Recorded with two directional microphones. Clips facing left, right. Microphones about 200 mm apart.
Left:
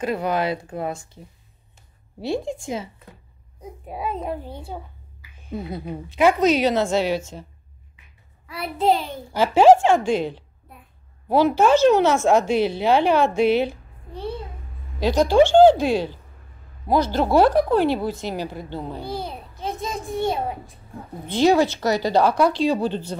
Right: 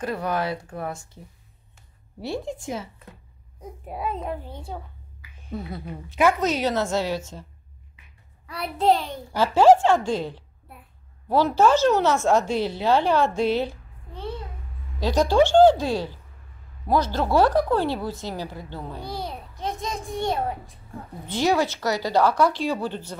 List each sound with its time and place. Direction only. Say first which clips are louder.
0.0 s speech: left 3 dB; 20° left (ahead or behind)
2.3 s a woman's voice: left 4 dB; 25° left (ahead or behind)
3.9 s a woman's voice: left 2 dB; 5° left (ahead or behind); by 7.4 s 20° left (ahead or behind)
8.5 s a child's voice: left 1 dB; centre (ahead or behind)
9.3 s a woman's voice: left 2 dB; 20° left (ahead or behind)
19.0 s a child's voice: left 2 dB; centre (ahead or behind)
21.3 s speech: left 5 dB; 15° left (ahead or behind)